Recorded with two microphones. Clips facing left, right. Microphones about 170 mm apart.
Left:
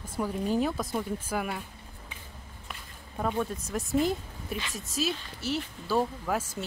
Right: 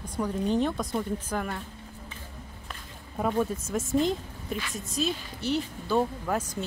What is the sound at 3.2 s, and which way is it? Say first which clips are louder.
Speech: right 3 dB; 5° right (ahead or behind).